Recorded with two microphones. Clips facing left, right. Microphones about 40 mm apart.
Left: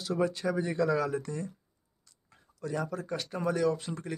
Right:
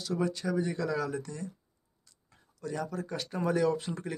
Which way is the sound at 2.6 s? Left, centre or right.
Centre.